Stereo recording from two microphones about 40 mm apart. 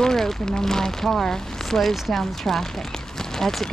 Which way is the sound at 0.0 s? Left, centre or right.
Centre.